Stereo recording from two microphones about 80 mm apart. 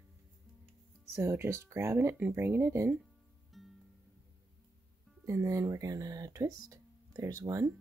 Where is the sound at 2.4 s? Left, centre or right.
Right.